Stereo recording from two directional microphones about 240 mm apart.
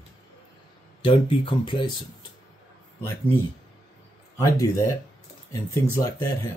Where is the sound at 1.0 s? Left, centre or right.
Left.